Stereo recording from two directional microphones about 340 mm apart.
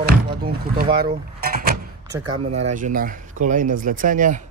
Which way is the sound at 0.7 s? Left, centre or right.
Right.